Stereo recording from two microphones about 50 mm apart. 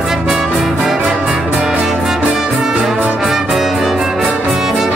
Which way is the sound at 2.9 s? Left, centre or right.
Right.